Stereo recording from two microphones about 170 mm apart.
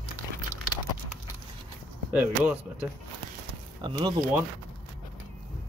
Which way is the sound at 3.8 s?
25° right (ahead or behind).